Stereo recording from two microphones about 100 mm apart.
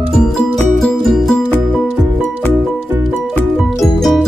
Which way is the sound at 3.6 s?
Centre (ahead or behind).